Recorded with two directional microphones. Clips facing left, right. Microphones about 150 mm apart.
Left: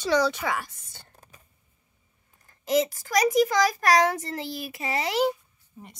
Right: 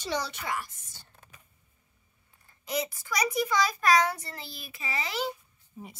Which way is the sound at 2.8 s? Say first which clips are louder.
Left 7 dB; 45° left (ahead or behind).